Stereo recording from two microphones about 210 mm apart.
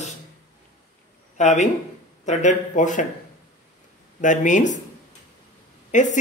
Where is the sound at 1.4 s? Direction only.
35° left (ahead or behind).